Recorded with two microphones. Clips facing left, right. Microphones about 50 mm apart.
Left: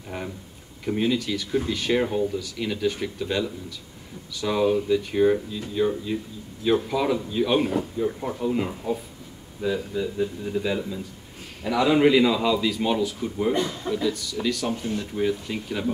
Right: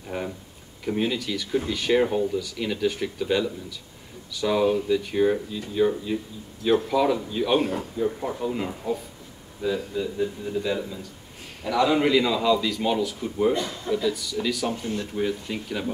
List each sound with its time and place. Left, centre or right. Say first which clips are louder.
0.8 s a man's voice: left 2 dB; centre